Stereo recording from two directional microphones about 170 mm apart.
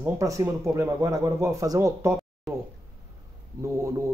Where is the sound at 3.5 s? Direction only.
15° right (ahead or behind).